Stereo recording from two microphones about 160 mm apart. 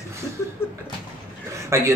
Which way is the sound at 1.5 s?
20° right (ahead or behind).